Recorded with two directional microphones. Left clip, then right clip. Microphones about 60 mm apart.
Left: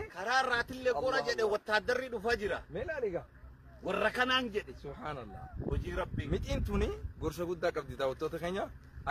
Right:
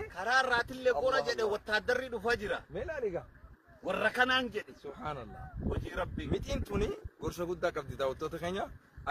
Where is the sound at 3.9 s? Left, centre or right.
Left.